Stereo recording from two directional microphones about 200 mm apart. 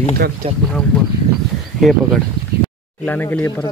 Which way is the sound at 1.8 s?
Centre (ahead or behind).